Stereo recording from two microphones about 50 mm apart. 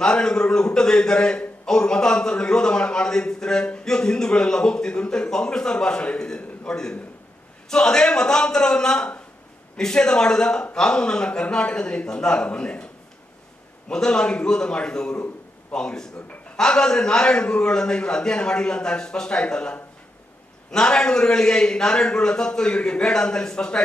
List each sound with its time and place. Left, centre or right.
0.0 s a man's voice: centre
13.8 s a man's voice: centre